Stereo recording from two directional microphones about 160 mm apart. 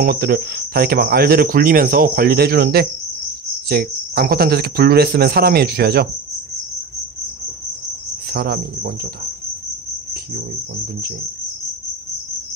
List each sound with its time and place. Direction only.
0.0 s speech: 70° right (ahead or behind)
8.3 s cricket: 85° right